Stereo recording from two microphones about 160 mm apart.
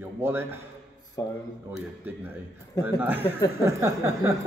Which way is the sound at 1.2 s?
25° left (ahead or behind).